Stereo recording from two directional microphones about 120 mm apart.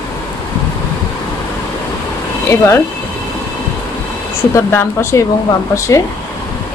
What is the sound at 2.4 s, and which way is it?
Speech, 20° left (ahead or behind).